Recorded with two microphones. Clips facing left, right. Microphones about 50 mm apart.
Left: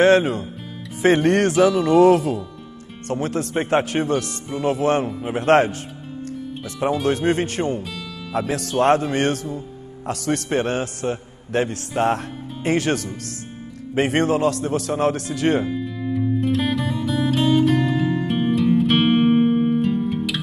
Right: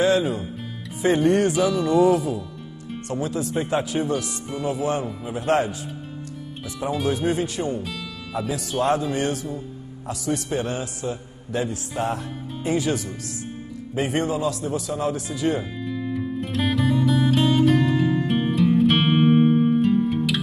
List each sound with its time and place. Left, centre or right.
0.0 s a man's voice: left
1.0 s a man's voice: left
1.5 s speech: centre
1.8 s a man's voice: left
7.1 s a man's voice: left
8.3 s a man's voice: left
15.7 s music: centre